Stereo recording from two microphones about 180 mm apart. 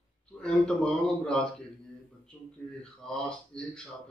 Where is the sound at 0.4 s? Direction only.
5° left (ahead or behind).